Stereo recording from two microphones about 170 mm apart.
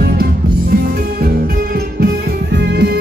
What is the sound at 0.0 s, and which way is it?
Music, 65° right (ahead or behind).